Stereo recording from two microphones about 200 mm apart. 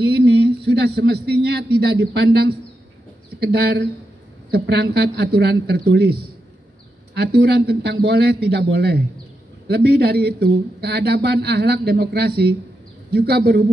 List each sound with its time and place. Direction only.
0.0 s a man's voice: 55° right (ahead or behind)